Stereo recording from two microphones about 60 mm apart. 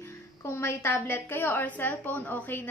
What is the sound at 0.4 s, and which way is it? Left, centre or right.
A woman's voice, left.